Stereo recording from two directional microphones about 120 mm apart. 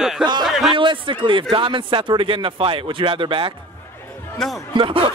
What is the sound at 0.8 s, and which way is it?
Speech, 45° right (ahead or behind).